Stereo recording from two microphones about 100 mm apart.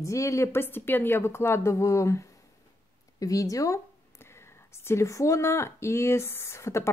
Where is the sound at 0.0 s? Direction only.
30° left (ahead or behind).